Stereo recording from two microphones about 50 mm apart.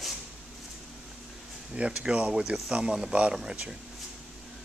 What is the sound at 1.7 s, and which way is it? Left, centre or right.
Speech, right.